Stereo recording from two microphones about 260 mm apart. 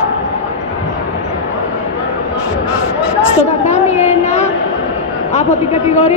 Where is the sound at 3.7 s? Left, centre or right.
Left.